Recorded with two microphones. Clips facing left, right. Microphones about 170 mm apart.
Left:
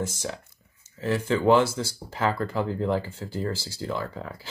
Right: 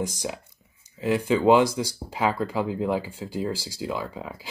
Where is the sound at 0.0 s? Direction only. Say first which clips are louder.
Right 1 dB; 15° right (ahead or behind).